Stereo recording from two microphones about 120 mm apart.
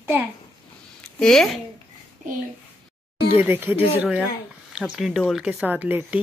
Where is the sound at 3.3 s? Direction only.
20° right (ahead or behind); by 5.6 s 5° right (ahead or behind).